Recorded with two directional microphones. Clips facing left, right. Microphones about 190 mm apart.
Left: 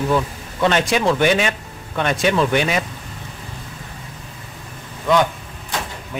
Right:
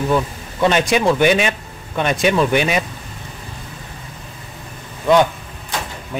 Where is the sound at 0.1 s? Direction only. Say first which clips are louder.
Right 1 dB; 15° right (ahead or behind).